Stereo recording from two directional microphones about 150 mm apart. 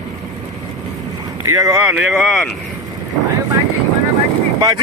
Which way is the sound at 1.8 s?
5° right (ahead or behind).